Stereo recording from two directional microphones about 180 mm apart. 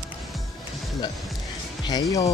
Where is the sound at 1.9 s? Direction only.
20° left (ahead or behind).